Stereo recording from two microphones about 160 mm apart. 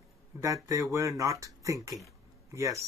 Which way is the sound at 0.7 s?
20° right (ahead or behind).